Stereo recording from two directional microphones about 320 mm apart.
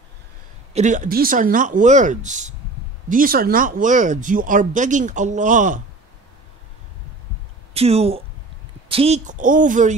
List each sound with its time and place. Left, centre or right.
0.7 s speech: right
7.7 s speech: centre